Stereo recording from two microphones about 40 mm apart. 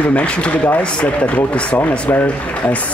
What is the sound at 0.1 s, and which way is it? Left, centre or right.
Speech, left.